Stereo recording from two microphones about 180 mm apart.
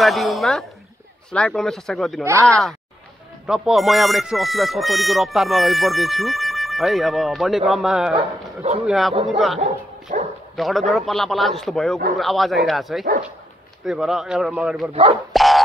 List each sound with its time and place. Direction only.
0.0 s a woman's voice: centre (ahead or behind)
9.6 s speech: 40° right (ahead or behind)
10.5 s speech: centre (ahead or behind)
15.3 s dog: centre (ahead or behind)